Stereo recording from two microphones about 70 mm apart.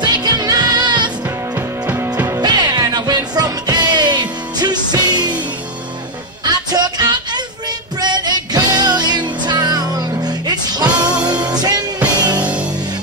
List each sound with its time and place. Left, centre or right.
0.0 s music: right
2.4 s music: right
6.4 s music: right
12.4 s music: centre